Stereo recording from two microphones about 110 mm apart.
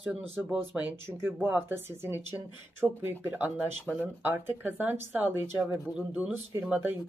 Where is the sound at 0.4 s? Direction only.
15° right (ahead or behind).